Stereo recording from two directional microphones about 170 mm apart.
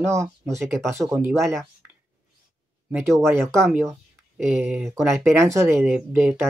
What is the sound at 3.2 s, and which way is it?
Speech, 15° right (ahead or behind).